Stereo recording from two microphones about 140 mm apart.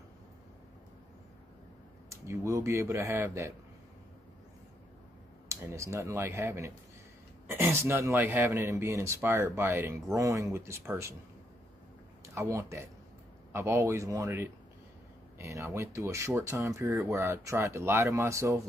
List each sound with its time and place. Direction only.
2.0 s speech: 20° right (ahead or behind)
5.5 s speech: 20° right (ahead or behind)
12.4 s speech: 20° right (ahead or behind)